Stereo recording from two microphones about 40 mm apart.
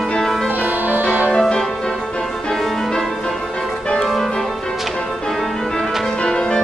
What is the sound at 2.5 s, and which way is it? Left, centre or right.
Music, centre.